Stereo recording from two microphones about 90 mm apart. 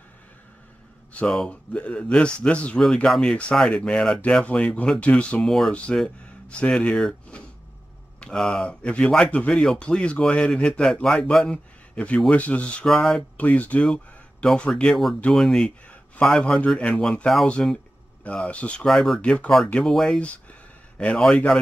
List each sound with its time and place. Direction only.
1.1 s speech: 10° left (ahead or behind)
13.4 s speech: 15° left (ahead or behind)